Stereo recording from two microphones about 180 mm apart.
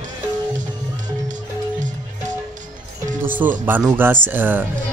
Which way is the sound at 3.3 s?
10° right (ahead or behind).